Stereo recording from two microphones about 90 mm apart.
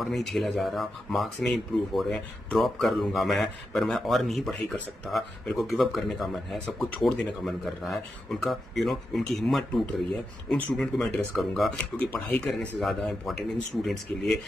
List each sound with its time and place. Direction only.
0.0 s speech: centre (ahead or behind)
12.0 s speech: 15° left (ahead or behind)
12.4 s speech: centre (ahead or behind)